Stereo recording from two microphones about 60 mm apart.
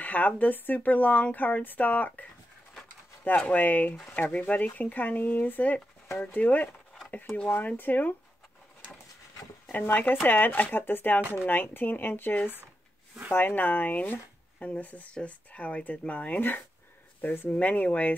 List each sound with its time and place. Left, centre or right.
0.0 s speech: left
3.3 s speech: left
9.7 s speech: left